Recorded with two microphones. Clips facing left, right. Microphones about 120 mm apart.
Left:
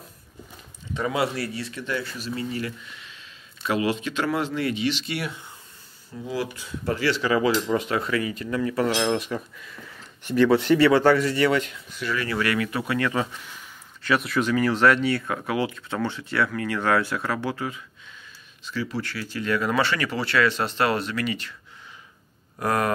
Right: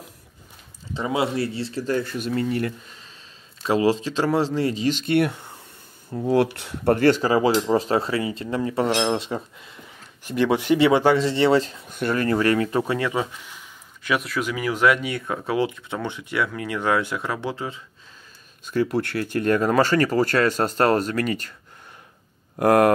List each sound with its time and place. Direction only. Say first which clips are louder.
0.9 s speech: right 2 dB; 25° right (ahead or behind)
11.9 s speech: right 6 dB; 50° right (ahead or behind); by 13.0 s 35° right (ahead or behind)
14.2 s speech: left 3 dB; 5° right (ahead or behind); by 17.8 s 25° right (ahead or behind)
18.7 s speech: right 7 dB; 55° right (ahead or behind)
22.6 s speech: right 8 dB; 60° right (ahead or behind)